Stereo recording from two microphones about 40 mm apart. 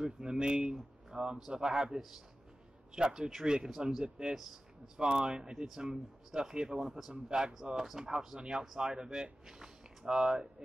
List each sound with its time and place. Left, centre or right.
0.0 s a man's voice: right
7.7 s a man's voice: centre